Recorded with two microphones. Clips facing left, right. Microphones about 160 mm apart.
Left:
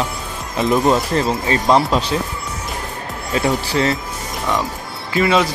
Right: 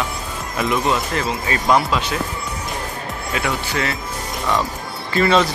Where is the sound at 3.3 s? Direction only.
35° left (ahead or behind).